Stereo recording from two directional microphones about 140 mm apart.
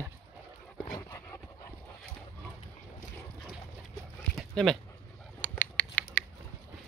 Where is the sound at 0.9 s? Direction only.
20° left (ahead or behind).